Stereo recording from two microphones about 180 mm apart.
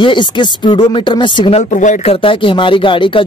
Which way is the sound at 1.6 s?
45° left (ahead or behind).